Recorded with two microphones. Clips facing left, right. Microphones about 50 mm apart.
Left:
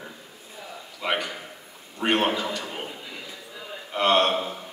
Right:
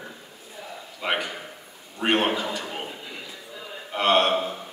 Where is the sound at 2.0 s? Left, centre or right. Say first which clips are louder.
Even; centre.